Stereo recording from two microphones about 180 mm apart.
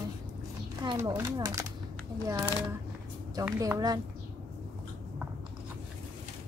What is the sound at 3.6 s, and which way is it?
Speech, 20° right (ahead or behind).